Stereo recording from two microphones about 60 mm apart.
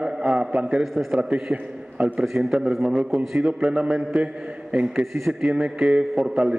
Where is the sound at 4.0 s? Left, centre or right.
Right.